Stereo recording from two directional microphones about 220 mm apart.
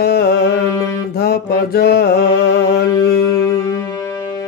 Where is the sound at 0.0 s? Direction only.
45° left (ahead or behind).